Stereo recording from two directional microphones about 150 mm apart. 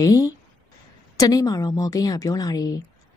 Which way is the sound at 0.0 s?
25° left (ahead or behind).